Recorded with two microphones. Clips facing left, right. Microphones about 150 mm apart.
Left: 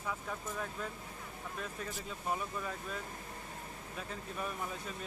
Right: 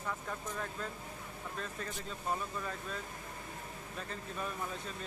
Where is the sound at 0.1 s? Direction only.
5° left (ahead or behind).